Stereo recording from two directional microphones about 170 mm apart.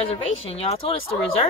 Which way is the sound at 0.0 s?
35° left (ahead or behind).